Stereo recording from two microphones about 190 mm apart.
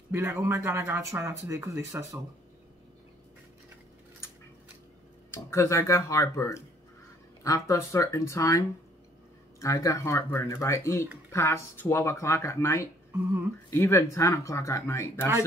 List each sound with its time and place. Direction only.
0.1 s speech: 10° right (ahead or behind)
5.3 s speech: 15° left (ahead or behind)